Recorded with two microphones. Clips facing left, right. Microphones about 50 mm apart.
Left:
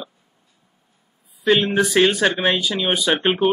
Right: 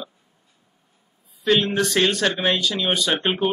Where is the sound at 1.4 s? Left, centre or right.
Centre.